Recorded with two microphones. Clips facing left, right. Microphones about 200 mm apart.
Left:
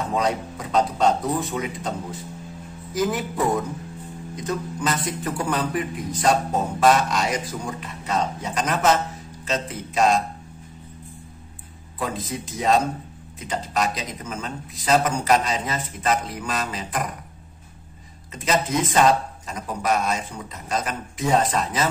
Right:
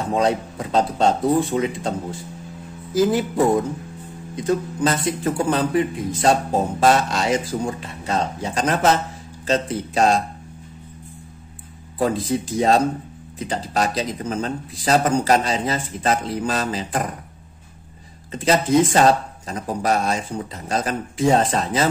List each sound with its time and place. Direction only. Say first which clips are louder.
0.1 s speech: right 6 dB; 30° right (ahead or behind)
4.5 s speech: right 6 dB; 30° right (ahead or behind)
12.0 s speech: right 8 dB; 30° right (ahead or behind)
18.3 s speech: right 6 dB; 30° right (ahead or behind)